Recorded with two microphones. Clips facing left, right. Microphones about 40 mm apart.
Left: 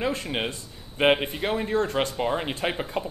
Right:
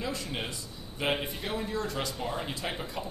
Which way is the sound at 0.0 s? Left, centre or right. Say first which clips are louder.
Left 7 dB; left.